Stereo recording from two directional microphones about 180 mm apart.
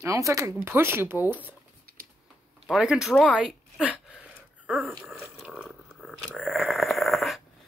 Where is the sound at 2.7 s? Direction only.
5° right (ahead or behind).